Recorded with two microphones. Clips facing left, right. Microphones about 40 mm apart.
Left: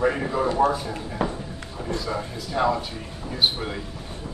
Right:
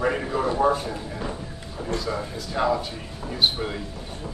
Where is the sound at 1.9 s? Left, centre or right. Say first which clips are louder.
Right 1 dB; centre.